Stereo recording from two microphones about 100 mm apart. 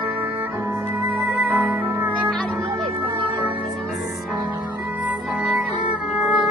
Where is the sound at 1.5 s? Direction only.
15° right (ahead or behind).